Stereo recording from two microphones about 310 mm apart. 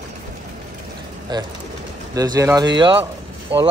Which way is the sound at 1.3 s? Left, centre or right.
Centre.